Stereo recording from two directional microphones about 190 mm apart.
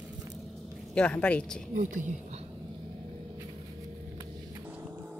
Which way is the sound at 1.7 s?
40° right (ahead or behind).